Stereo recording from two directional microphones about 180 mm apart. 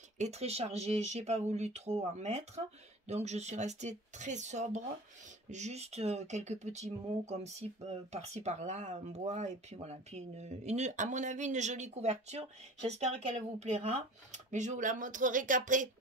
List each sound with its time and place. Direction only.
0.2 s speech: 35° right (ahead or behind)